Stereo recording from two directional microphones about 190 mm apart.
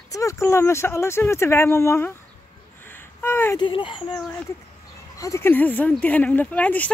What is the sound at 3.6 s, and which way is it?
Speech, 25° left (ahead or behind).